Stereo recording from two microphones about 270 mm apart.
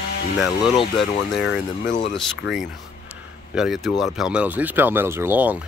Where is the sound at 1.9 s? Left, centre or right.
Left.